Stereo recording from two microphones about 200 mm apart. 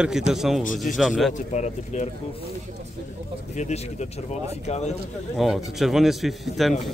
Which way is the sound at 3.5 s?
35° left (ahead or behind).